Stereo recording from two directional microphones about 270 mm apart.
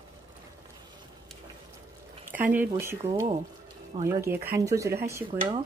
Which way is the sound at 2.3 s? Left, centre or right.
Centre.